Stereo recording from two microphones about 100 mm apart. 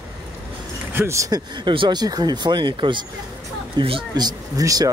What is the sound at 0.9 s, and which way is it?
Speech, 25° right (ahead or behind).